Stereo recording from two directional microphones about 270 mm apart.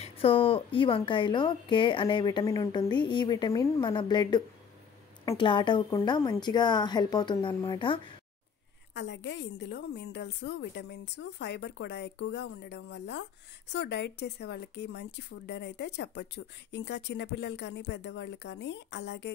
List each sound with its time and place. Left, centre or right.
0.0 s a woman's voice: left
8.9 s a woman's voice: left